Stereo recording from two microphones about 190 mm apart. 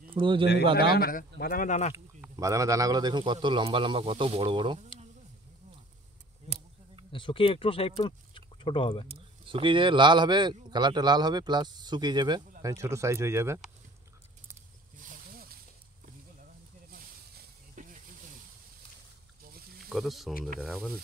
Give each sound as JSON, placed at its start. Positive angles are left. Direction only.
{"t": 0.1, "sound": "a man's voice", "side_deg": -25}
{"t": 0.7, "sound": "speech", "side_deg": 55}
{"t": 2.3, "sound": "speech", "side_deg": -15}
{"t": 7.1, "sound": "speech", "side_deg": 25}
{"t": 9.0, "sound": "speech", "side_deg": -30}
{"t": 15.0, "sound": "a sound", "side_deg": -50}
{"t": 16.9, "sound": "snake", "side_deg": -50}
{"t": 19.9, "sound": "speech", "side_deg": 0}